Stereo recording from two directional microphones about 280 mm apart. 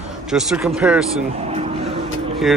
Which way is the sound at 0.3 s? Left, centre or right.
Centre.